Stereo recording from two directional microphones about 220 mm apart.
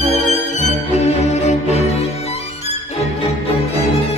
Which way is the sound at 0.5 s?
30° left (ahead or behind).